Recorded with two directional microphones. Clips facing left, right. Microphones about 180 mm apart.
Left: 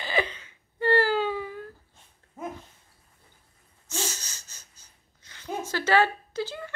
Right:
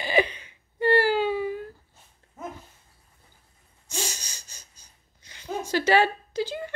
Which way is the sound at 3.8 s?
15° right (ahead or behind).